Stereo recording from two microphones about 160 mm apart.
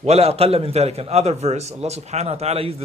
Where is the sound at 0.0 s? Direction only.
40° right (ahead or behind).